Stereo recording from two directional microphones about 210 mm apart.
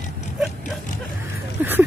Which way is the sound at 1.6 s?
10° right (ahead or behind).